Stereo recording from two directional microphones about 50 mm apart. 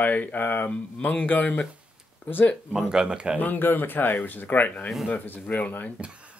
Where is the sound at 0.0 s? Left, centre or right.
Left.